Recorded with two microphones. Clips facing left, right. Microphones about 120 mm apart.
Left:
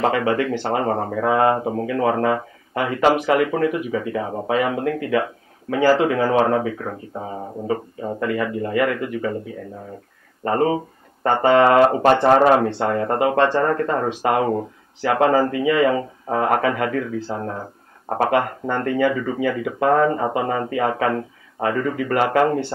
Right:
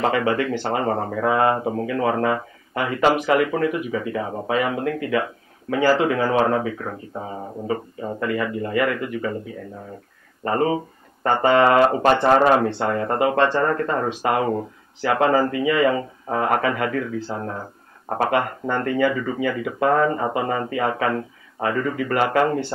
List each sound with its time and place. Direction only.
0.0 s speech: 30° left (ahead or behind)
10.4 s speech: 25° left (ahead or behind)